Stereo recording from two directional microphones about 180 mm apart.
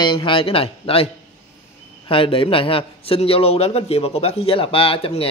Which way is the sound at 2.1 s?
30° left (ahead or behind).